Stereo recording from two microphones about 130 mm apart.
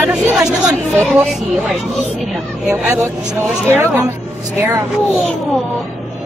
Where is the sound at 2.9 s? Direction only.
20° right (ahead or behind).